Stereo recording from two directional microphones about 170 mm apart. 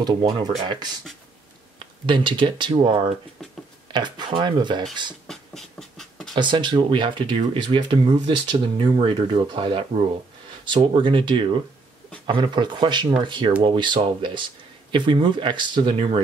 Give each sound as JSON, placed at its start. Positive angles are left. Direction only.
{"t": 0.0, "sound": "speech", "side_deg": -25}
{"t": 2.0, "sound": "speech", "side_deg": -30}
{"t": 5.2, "sound": "a sound", "side_deg": 5}
{"t": 6.3, "sound": "speech", "side_deg": -25}